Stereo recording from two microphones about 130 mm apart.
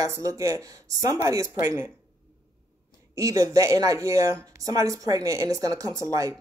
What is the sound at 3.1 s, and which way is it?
Speech, 25° right (ahead or behind).